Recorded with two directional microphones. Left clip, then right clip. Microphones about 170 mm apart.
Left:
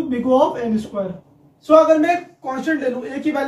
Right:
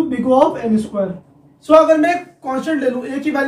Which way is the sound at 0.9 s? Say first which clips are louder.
Right 4 dB; 10° right (ahead or behind).